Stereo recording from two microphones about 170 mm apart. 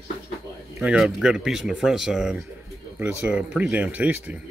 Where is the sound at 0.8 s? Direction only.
5° right (ahead or behind).